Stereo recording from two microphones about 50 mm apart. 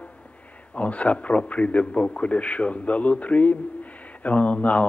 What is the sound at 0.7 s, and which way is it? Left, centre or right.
A man's voice, left.